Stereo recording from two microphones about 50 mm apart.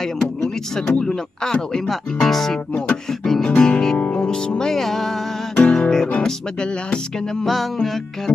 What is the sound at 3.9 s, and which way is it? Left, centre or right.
Music, left.